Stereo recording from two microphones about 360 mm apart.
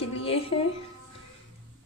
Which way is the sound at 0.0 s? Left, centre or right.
Centre.